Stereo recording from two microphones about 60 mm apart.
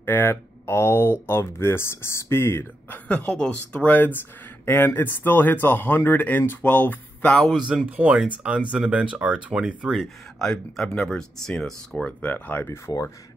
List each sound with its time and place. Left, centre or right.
0.0 s speech: left
2.9 s speech: left
4.6 s speech: left
7.5 s speech: centre
7.8 s speech: right
10.4 s speech: centre
12.2 s speech: left
12.6 s speech: left